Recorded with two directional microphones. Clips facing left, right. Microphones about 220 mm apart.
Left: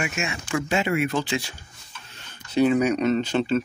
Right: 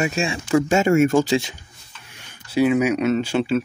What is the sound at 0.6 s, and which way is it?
Speech, 45° right (ahead or behind).